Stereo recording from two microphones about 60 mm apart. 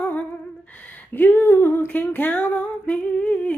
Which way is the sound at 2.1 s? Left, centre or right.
Left.